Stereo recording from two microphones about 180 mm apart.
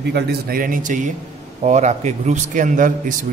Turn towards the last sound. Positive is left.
turn(degrees=-45)  # may be behind; listen again after turning